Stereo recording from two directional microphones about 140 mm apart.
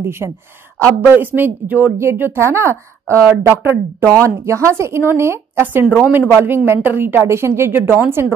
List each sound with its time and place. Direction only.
0.0 s speech: 15° right (ahead or behind)